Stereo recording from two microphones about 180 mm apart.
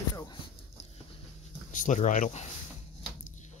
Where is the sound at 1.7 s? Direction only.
45° left (ahead or behind).